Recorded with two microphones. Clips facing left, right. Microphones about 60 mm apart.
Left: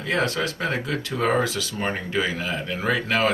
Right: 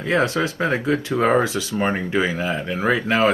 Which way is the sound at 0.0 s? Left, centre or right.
Right.